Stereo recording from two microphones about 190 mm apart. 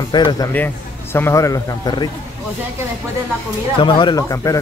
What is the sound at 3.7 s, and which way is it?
Speech, 25° left (ahead or behind).